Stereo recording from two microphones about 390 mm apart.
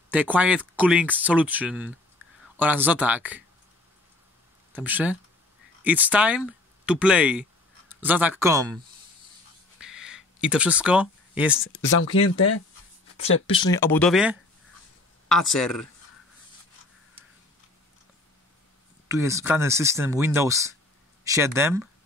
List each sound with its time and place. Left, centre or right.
0.1 s speech: centre
4.7 s speech: centre
9.8 s a sound: centre
11.6 s speech: left
13.2 s speech: centre
19.0 s speech: centre